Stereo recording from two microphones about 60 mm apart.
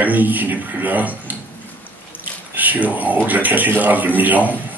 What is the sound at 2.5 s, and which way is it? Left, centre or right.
Speech, right.